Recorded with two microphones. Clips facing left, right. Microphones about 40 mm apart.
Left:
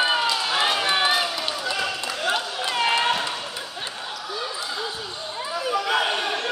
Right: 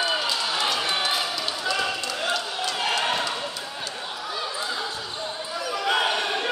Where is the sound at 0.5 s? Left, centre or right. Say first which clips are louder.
Left 5 dB; left.